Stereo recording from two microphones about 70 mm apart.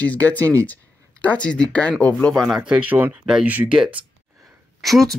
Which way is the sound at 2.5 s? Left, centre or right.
Centre.